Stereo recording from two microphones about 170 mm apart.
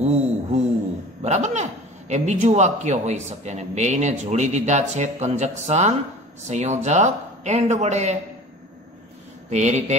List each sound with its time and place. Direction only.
0.0 s a sound: 40° right (ahead or behind)
1.2 s a man's voice: 45° right (ahead or behind)
9.5 s a man's voice: 40° right (ahead or behind)